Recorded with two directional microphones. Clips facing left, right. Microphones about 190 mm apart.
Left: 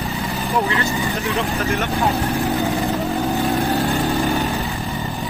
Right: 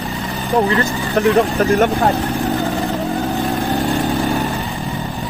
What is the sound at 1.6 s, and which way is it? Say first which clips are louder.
Speech: right 7 dB; 55° right (ahead or behind).